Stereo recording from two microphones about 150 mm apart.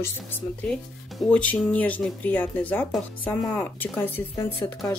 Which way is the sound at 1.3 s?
10° left (ahead or behind).